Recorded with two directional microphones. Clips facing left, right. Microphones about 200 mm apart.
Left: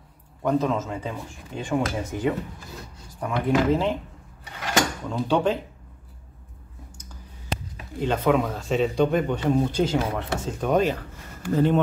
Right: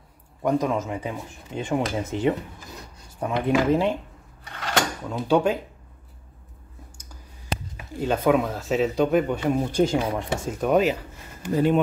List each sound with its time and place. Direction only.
0.4 s speech: 15° right (ahead or behind)
5.0 s speech: 10° right (ahead or behind)
8.0 s speech: 5° right (ahead or behind)